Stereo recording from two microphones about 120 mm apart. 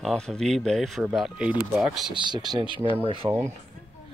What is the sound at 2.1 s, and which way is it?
Speech, 35° right (ahead or behind).